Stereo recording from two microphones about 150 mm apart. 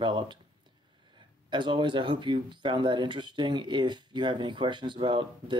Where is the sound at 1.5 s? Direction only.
30° right (ahead or behind).